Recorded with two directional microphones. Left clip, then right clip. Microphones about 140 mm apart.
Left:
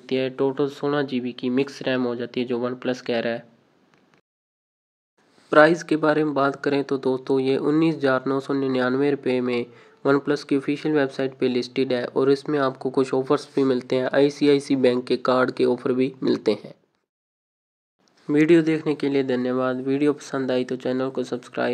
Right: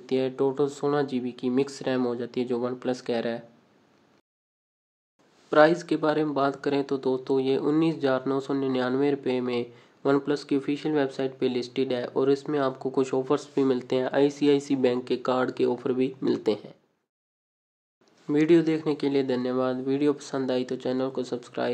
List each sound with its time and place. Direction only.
0.0 s speech: 15° left (ahead or behind)
5.5 s speech: 25° left (ahead or behind)
18.2 s speech: 20° left (ahead or behind)